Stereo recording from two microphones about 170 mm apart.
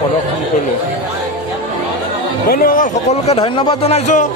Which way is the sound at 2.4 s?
60° left (ahead or behind).